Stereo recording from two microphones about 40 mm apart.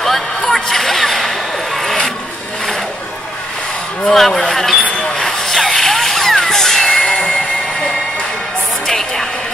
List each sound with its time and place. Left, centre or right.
0.0 s a sound: centre
4.0 s speech: centre
4.9 s vehicle: centre
6.9 s train: left
8.8 s music: centre